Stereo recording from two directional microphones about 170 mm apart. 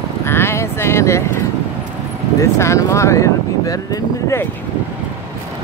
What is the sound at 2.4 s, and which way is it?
Speech, 15° left (ahead or behind).